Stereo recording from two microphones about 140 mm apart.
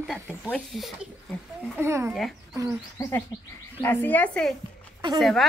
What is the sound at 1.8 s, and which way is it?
Speech, 20° right (ahead or behind).